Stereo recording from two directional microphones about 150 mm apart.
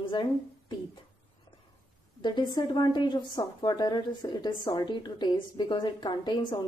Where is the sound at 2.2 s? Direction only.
30° left (ahead or behind).